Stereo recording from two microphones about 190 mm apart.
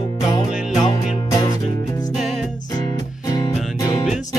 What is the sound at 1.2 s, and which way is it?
Music, 20° left (ahead or behind).